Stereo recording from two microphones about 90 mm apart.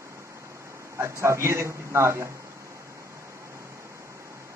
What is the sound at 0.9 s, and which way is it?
Speech, 30° right (ahead or behind).